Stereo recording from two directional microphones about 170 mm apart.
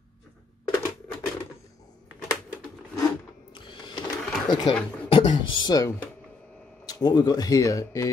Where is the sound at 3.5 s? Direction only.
30° left (ahead or behind).